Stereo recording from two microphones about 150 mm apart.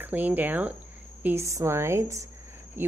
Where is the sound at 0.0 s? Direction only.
10° right (ahead or behind).